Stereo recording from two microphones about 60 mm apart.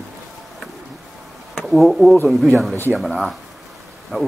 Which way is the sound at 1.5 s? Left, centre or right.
Centre.